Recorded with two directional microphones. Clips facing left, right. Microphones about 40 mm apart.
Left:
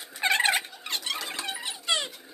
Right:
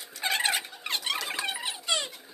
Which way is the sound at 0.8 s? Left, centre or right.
Centre.